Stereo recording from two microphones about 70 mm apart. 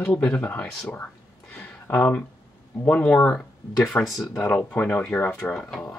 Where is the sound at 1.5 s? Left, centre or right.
Left.